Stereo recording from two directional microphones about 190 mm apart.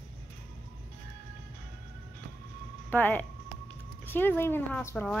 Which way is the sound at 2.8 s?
10° left (ahead or behind).